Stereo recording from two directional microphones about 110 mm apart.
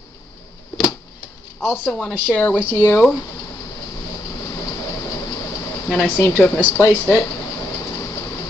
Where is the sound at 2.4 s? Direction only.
20° left (ahead or behind).